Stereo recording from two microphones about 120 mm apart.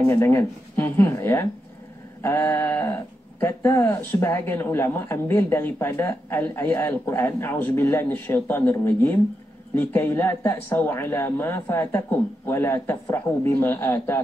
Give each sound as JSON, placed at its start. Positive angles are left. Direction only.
{"t": 0.0, "sound": "speech", "side_deg": 20}